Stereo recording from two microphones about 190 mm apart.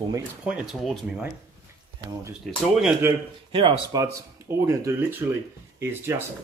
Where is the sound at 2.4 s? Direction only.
5° right (ahead or behind).